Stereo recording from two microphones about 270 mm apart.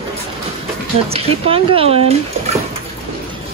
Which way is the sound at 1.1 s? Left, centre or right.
Right.